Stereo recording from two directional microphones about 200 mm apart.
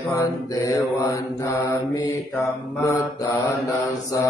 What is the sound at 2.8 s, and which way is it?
Mantra, 15° left (ahead or behind).